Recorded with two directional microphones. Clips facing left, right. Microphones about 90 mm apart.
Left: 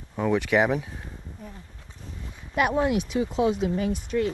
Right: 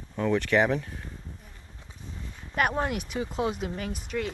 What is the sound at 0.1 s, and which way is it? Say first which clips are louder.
Speech: left 2 dB; 10° left (ahead or behind).